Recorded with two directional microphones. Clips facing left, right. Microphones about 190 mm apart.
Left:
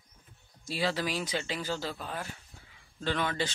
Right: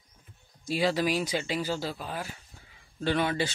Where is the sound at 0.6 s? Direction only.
15° right (ahead or behind).